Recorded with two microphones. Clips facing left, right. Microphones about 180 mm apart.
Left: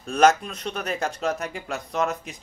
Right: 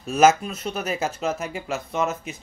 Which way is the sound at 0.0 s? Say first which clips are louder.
Right 1 dB; 5° right (ahead or behind).